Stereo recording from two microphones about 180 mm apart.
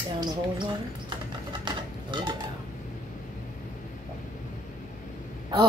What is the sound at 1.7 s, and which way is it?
Dishes, 25° right (ahead or behind).